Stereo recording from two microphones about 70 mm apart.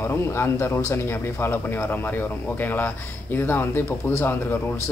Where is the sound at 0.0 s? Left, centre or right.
Left.